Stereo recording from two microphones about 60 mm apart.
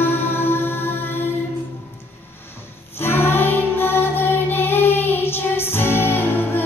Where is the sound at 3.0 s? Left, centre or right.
Left.